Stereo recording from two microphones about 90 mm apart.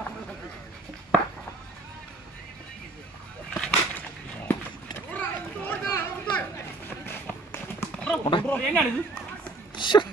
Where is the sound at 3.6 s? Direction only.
20° left (ahead or behind).